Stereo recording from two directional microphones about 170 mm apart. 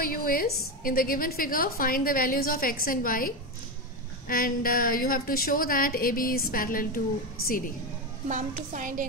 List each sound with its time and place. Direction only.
0.0 s a woman's voice: 55° left (ahead or behind)
8.3 s a woman's voice: 50° right (ahead or behind)